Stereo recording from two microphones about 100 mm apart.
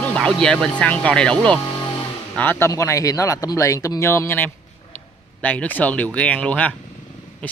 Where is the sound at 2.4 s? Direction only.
20° left (ahead or behind).